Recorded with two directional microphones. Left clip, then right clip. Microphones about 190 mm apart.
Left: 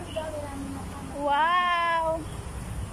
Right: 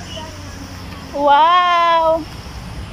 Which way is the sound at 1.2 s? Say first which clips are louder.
Right 12 dB; 25° right (ahead or behind).